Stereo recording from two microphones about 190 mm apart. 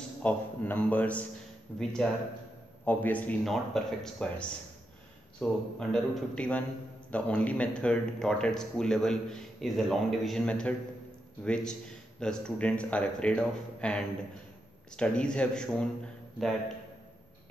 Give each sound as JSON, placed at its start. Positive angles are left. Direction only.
{"t": 0.2, "sound": "a man's voice", "side_deg": 10}